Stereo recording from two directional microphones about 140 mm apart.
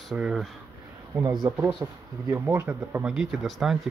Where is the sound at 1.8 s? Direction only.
20° right (ahead or behind).